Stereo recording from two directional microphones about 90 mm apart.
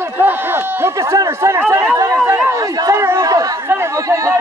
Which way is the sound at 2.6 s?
35° right (ahead or behind).